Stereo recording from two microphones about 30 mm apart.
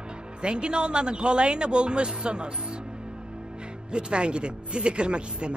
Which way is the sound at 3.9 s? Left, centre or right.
Right.